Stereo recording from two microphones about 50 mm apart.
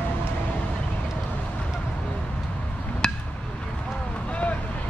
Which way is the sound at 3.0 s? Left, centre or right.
Centre.